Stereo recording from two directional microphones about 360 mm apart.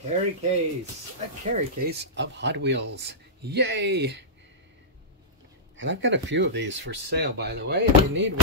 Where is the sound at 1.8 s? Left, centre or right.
Right.